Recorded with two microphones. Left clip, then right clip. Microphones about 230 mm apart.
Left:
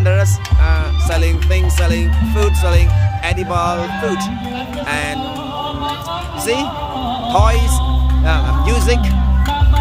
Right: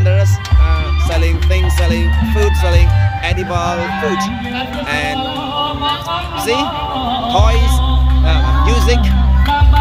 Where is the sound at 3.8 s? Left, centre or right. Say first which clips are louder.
Right 3 dB; left.